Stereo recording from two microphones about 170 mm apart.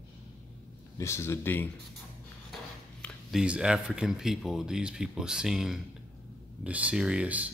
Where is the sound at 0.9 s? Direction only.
15° left (ahead or behind).